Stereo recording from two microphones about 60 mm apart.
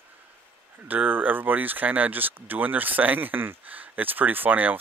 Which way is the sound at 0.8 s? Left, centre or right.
Right.